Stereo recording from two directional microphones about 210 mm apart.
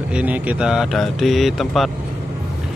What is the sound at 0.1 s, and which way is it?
Speech, 5° right (ahead or behind).